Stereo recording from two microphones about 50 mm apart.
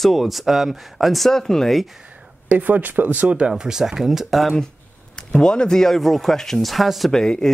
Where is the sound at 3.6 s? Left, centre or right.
Centre.